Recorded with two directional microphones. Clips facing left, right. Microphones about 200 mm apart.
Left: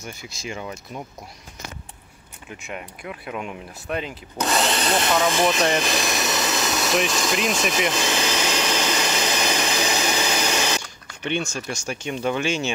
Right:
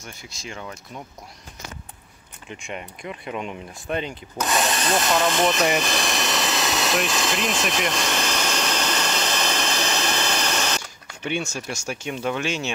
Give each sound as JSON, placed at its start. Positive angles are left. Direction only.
{"t": 0.0, "sound": "speech", "side_deg": 5}
{"t": 2.5, "sound": "speech", "side_deg": 5}
{"t": 4.4, "sound": "speech", "side_deg": 25}
{"t": 5.2, "sound": "speech", "side_deg": 10}
{"t": 5.8, "sound": "a sound", "side_deg": 5}
{"t": 11.2, "sound": "speech", "side_deg": -5}